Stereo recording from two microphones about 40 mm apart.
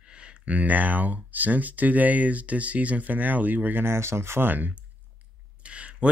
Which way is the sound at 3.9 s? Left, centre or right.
Right.